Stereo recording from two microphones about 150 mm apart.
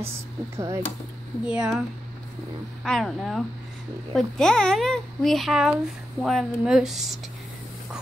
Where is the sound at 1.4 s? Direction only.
5° right (ahead or behind).